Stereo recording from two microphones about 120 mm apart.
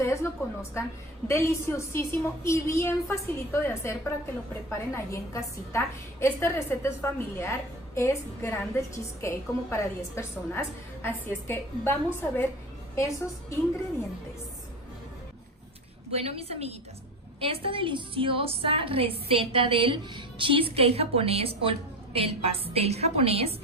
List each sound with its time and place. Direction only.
0.1 s a woman's voice: 25° left (ahead or behind)
16.1 s a woman's voice: 55° right (ahead or behind)